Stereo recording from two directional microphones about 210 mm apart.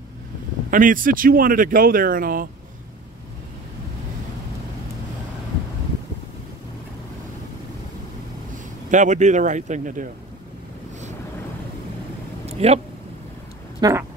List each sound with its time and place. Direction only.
0.7 s speech: 40° right (ahead or behind)
8.9 s speech: 35° right (ahead or behind)
12.4 s a sound: 30° right (ahead or behind)
13.7 s speech: 15° right (ahead or behind)